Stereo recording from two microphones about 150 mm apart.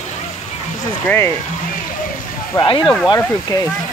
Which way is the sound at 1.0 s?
15° left (ahead or behind).